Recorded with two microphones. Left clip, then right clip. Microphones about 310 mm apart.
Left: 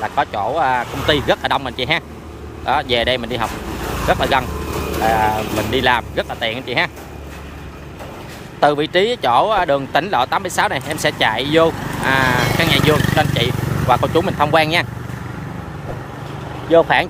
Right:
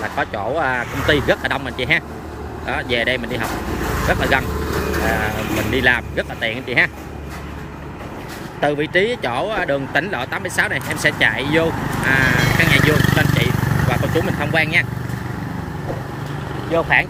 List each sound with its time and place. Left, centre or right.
0.0 s speech: centre
5.7 s speech: centre
8.5 s speech: centre
16.7 s speech: centre